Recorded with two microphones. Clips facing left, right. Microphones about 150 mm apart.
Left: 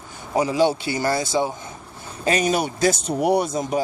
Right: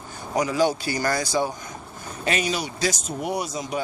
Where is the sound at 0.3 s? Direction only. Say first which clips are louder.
Left 3 dB; 25° left (ahead or behind).